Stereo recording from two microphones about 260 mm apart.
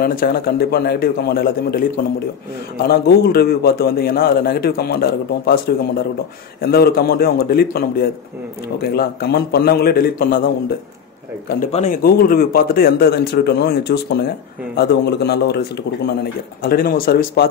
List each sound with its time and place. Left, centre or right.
0.0 s a man's voice: left
11.7 s a man's voice: left
16.6 s a man's voice: left